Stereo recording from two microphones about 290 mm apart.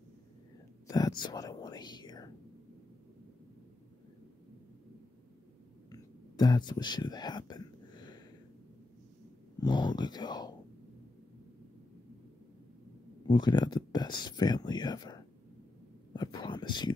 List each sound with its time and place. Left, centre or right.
0.8 s whispering: centre
5.9 s whispering: centre
9.6 s speech: centre
13.3 s speech: centre
16.1 s a sound: centre